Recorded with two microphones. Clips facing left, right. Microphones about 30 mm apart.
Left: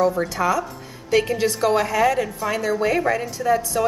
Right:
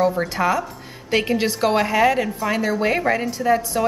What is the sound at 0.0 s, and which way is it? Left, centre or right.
A woman's voice, centre.